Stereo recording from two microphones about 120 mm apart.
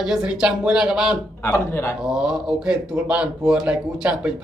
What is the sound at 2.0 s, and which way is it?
Speech, 5° right (ahead or behind).